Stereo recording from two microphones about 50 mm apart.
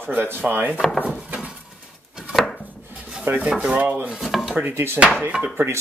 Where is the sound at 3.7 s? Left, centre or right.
Right.